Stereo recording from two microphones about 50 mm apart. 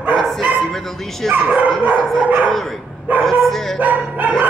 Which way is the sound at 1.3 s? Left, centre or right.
Right.